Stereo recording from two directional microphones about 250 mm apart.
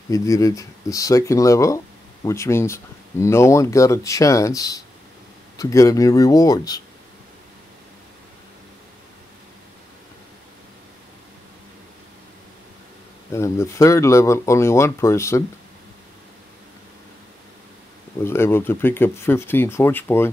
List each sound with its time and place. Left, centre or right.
0.1 s speech: centre
13.3 s speech: centre
18.2 s speech: centre